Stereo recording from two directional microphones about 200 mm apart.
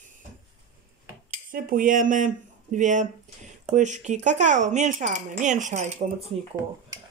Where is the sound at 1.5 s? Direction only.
45° right (ahead or behind).